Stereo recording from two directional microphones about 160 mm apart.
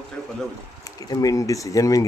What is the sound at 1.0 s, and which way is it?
Speech, 20° left (ahead or behind).